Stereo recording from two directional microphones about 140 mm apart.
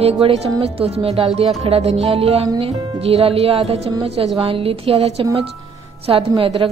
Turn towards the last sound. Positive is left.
turn(degrees=-40)  # may be behind; listen again after turning